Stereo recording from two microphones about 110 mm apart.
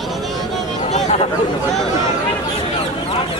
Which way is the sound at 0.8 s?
90° left.